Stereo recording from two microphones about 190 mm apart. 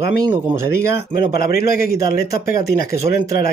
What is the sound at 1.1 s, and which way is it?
Speech, 50° left (ahead or behind).